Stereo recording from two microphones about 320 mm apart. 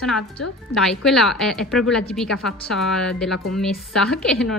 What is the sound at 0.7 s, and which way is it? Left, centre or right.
A woman's voice, centre.